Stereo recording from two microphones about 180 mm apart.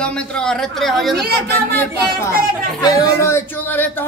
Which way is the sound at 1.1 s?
65° right (ahead or behind).